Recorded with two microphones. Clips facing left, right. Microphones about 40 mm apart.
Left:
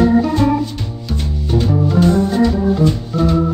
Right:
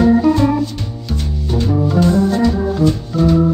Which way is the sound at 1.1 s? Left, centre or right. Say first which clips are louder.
Left 2 dB; centre.